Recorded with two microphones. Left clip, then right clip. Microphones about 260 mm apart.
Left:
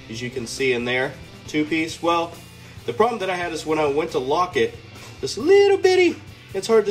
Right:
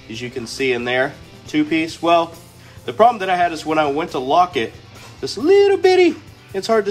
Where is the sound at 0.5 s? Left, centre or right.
Centre.